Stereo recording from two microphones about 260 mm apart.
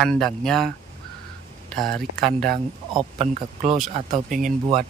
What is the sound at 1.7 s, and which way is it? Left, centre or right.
Mantra, centre.